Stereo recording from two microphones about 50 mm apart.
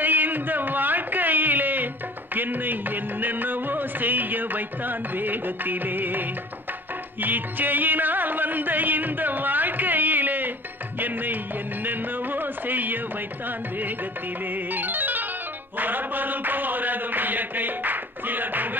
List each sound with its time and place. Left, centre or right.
0.0 s a sound: right
2.3 s music: right
11.8 s music: right
14.7 s music: right